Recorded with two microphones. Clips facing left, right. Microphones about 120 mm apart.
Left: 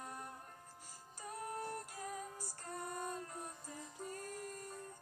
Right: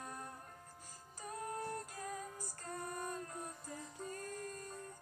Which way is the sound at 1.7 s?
15° left (ahead or behind).